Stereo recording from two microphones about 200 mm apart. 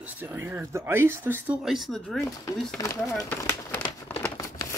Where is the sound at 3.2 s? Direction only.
10° left (ahead or behind).